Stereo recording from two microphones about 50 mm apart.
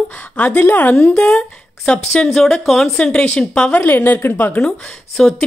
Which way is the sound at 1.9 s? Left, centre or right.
Left.